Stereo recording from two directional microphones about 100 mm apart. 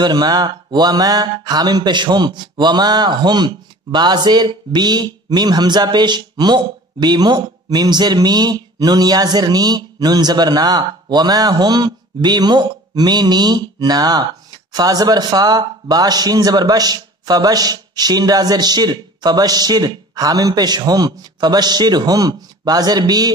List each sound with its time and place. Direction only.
0.0 s mantra: 45° right (ahead or behind)